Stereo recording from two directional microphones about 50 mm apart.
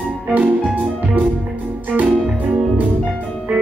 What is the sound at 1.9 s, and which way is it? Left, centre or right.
Music, right.